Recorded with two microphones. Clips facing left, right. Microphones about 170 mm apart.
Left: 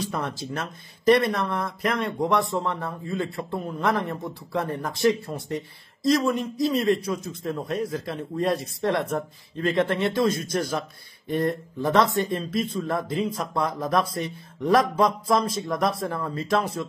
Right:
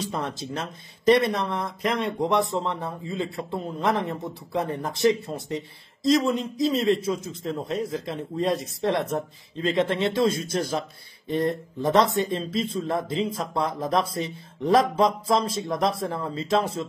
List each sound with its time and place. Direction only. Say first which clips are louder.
0.1 s speech: even; 25° right (ahead or behind)